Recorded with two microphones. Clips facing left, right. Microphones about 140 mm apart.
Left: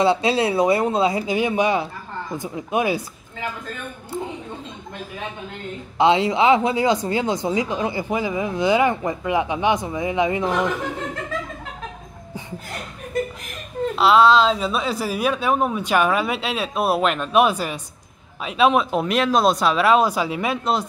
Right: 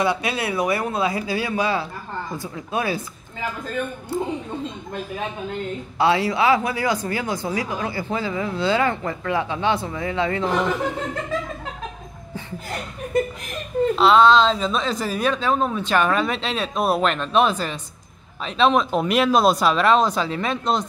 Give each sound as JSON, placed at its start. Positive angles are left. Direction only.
{"t": 0.0, "sound": "speech", "side_deg": 25}
{"t": 5.9, "sound": "speech", "side_deg": 20}
{"t": 13.9, "sound": "speech", "side_deg": 5}